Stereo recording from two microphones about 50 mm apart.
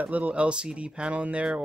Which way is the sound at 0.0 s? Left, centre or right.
Right.